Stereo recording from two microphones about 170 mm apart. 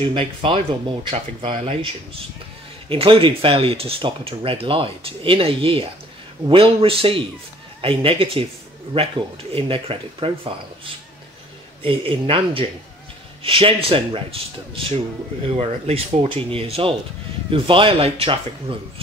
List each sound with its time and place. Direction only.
0.0 s speech: 35° right (ahead or behind)
11.8 s speech: 30° right (ahead or behind)